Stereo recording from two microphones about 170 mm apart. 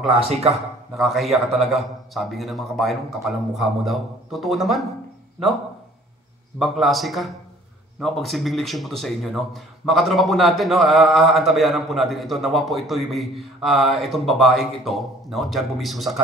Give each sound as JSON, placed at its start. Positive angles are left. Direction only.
{"t": 0.2, "sound": "a man's voice", "side_deg": -35}
{"t": 0.9, "sound": "speech", "side_deg": 0}
{"t": 6.6, "sound": "speech", "side_deg": 0}